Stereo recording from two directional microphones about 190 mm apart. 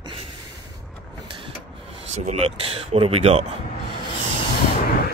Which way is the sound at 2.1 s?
35° right (ahead or behind).